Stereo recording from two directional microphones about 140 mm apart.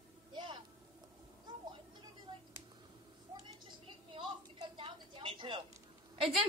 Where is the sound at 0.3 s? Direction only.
35° right (ahead or behind).